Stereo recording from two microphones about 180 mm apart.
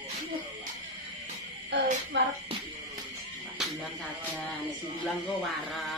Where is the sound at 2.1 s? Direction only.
75° right (ahead or behind).